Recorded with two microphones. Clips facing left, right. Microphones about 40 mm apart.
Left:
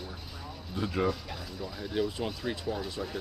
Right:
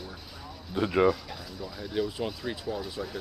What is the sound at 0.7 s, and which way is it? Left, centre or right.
Speech, right.